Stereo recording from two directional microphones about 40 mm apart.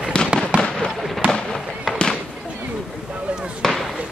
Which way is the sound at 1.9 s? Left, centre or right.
Centre.